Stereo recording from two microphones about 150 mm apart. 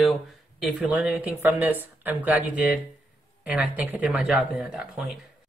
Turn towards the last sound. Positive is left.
turn(degrees=-5)  # may be behind; listen again after turning